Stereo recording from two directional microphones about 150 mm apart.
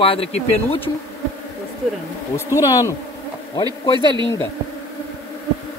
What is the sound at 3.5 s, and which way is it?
Speech, 30° left (ahead or behind).